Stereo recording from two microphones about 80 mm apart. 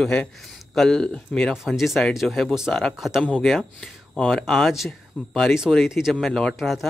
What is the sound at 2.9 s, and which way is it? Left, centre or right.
Speech, centre.